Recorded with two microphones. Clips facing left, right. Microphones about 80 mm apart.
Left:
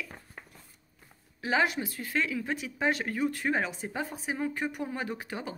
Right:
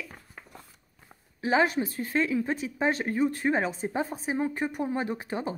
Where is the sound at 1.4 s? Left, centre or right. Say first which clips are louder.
Right 3 dB; right.